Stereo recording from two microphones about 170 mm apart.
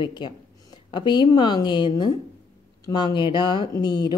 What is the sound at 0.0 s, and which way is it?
Speech, 25° left (ahead or behind).